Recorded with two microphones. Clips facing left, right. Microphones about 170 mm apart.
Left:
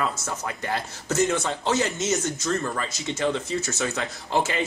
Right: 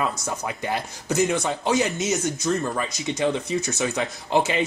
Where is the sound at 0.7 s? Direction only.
15° right (ahead or behind).